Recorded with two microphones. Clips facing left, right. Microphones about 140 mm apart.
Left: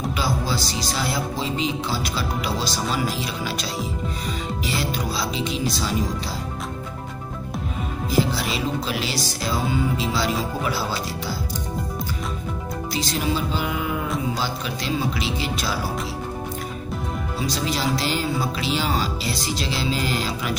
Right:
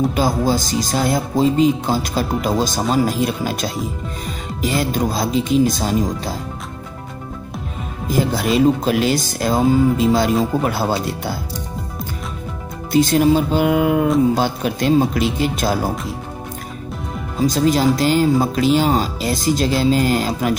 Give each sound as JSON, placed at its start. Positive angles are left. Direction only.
{"t": 0.1, "sound": "speech", "side_deg": -45}
{"t": 8.1, "sound": "speech", "side_deg": -50}
{"t": 12.9, "sound": "speech", "side_deg": -50}
{"t": 17.4, "sound": "speech", "side_deg": -45}